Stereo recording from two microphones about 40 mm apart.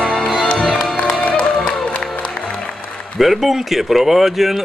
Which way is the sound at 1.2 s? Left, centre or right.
Left.